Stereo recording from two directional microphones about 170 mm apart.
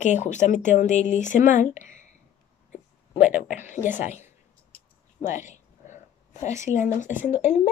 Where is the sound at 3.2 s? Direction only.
50° left (ahead or behind).